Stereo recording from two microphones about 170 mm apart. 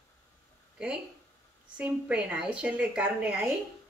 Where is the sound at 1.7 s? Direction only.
5° right (ahead or behind).